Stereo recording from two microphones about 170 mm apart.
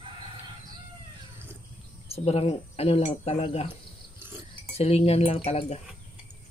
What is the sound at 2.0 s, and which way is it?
A man's voice, 35° left (ahead or behind).